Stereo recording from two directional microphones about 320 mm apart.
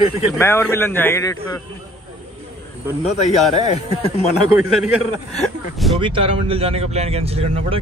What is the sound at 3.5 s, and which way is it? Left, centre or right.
Speech, centre.